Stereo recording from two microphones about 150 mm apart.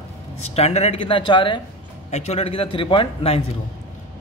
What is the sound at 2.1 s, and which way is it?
A man's voice, 45° left (ahead or behind).